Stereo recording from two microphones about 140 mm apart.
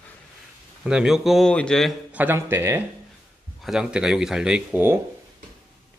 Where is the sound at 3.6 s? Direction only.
5° right (ahead or behind).